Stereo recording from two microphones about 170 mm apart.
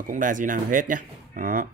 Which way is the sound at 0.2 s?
50° right (ahead or behind).